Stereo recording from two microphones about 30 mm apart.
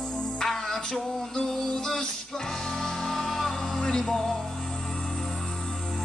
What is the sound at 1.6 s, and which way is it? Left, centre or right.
Music, centre.